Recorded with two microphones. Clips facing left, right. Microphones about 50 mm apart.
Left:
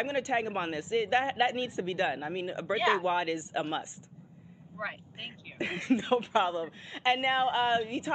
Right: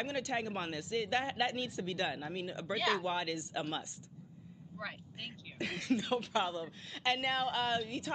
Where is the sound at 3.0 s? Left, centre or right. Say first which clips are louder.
Left 7 dB; centre.